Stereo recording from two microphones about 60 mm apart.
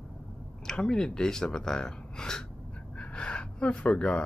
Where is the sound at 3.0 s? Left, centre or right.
Centre.